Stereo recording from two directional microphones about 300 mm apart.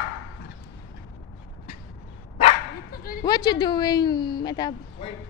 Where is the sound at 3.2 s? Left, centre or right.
Centre.